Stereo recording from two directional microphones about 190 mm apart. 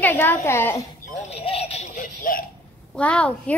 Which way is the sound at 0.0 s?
10° left (ahead or behind).